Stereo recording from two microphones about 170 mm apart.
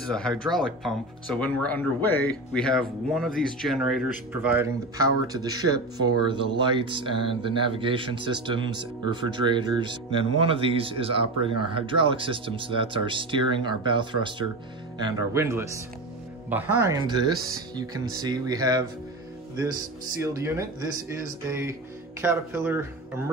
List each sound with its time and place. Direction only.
0.0 s speech: 5° left (ahead or behind); by 17.0 s 15° right (ahead or behind)
17.0 s speech: 25° right (ahead or behind)